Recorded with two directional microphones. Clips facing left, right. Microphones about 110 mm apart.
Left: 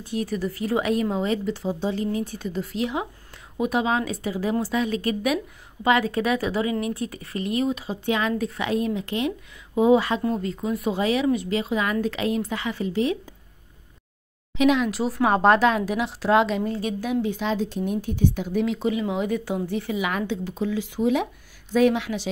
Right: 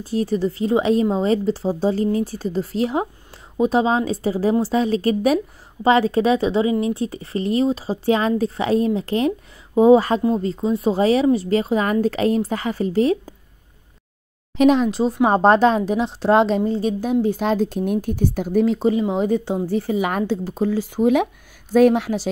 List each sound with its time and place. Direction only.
0.0 s a woman's voice: 35° right (ahead or behind)
14.6 s a woman's voice: 35° right (ahead or behind)
14.9 s a woman's voice: 25° right (ahead or behind); by 22.3 s 40° right (ahead or behind)